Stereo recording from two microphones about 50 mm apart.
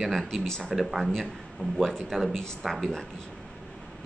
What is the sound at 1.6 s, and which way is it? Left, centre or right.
Speech, left.